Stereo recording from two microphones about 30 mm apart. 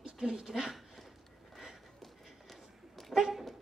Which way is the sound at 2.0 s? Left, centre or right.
Centre.